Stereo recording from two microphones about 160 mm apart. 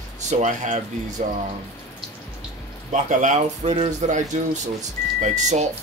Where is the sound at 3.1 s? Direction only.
50° right (ahead or behind).